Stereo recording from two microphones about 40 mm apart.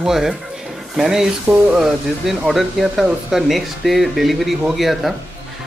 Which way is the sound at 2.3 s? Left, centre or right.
Centre.